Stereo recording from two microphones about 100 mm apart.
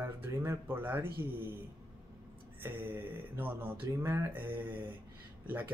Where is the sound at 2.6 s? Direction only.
20° right (ahead or behind).